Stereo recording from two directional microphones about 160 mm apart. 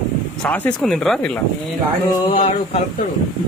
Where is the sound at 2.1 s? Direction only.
35° left (ahead or behind).